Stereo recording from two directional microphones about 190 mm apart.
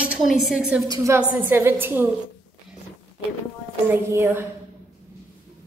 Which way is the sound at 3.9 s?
10° right (ahead or behind).